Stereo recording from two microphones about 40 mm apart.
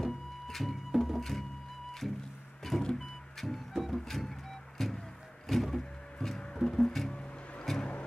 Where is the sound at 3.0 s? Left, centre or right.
Centre.